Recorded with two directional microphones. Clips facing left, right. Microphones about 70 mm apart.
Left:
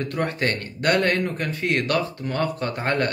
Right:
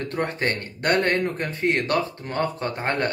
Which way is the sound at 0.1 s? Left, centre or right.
Right.